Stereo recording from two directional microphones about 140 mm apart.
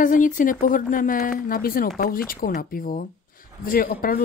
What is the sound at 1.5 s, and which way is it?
Speech, 90° left.